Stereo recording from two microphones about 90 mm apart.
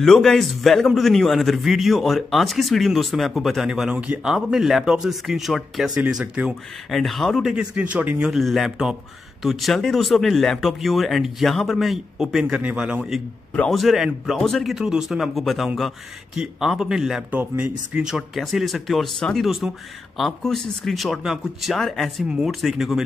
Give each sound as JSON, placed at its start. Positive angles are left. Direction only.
{"t": 0.0, "sound": "a man's voice", "side_deg": 5}
{"t": 7.5, "sound": "speech", "side_deg": -15}
{"t": 8.3, "sound": "a man's voice", "side_deg": 0}
{"t": 13.7, "sound": "a man's voice", "side_deg": 0}
{"t": 17.3, "sound": "speech", "side_deg": -15}
{"t": 18.0, "sound": "a man's voice", "side_deg": -5}